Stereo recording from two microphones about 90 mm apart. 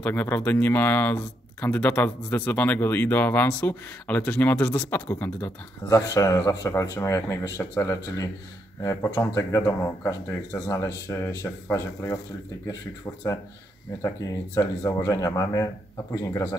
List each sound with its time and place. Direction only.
0.0 s speech: 20° left (ahead or behind)
5.2 s speech: 30° left (ahead or behind)